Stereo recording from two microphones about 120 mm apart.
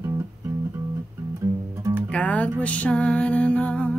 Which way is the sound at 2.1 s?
10° left (ahead or behind).